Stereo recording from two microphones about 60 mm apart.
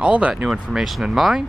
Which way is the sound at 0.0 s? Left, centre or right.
Right.